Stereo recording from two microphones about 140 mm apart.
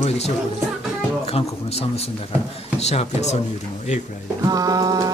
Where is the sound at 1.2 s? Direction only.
45° left (ahead or behind).